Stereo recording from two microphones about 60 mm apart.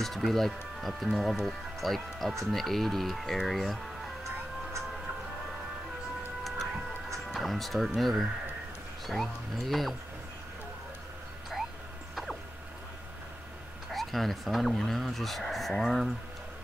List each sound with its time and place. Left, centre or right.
0.0 s speech: centre
6.4 s music: centre
7.3 s speech: centre
13.8 s speech: centre